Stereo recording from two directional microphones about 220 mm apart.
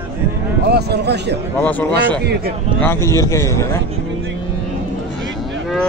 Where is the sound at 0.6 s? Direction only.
50° right (ahead or behind).